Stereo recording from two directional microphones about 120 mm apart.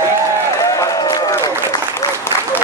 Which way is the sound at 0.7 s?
25° left (ahead or behind).